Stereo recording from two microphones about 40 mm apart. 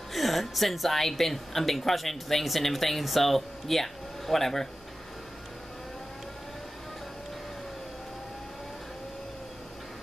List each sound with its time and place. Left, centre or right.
0.1 s a woman's voice: centre